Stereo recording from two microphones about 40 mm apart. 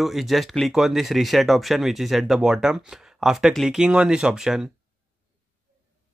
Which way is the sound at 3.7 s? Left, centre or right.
Centre.